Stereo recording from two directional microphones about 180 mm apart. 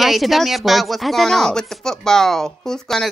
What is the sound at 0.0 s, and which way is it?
Speech, centre (ahead or behind).